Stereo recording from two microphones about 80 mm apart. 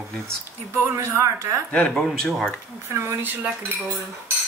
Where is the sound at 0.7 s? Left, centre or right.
Right.